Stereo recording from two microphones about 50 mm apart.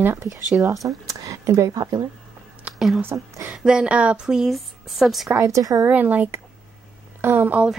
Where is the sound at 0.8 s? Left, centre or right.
Right.